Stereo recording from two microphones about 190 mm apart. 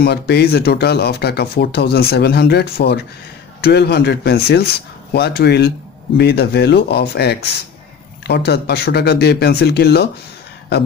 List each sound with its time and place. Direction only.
0.0 s speech: 60° left (ahead or behind)